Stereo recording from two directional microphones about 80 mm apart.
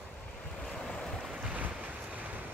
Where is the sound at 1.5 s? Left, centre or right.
Centre.